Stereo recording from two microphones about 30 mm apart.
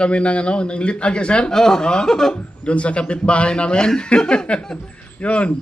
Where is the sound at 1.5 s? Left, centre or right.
Centre.